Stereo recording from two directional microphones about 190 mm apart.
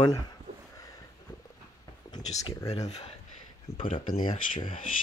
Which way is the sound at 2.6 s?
35° left (ahead or behind).